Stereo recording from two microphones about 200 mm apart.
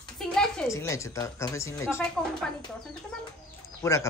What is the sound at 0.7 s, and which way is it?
Speech, 15° left (ahead or behind).